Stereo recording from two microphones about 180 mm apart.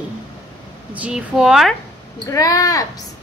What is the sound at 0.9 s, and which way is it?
Speech, 5° right (ahead or behind).